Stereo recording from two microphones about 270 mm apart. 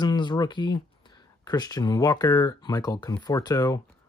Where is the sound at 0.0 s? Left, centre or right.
Centre.